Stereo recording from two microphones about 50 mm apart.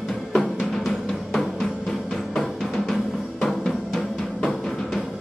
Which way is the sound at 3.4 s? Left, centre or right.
Centre.